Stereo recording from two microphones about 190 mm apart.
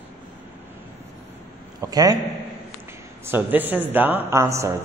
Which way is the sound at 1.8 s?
20° right (ahead or behind).